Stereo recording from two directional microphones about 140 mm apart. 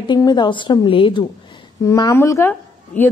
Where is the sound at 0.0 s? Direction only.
30° left (ahead or behind).